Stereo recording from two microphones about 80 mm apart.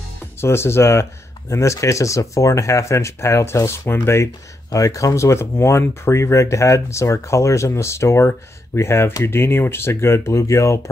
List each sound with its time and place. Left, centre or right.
0.4 s speech: left
4.6 s speech: left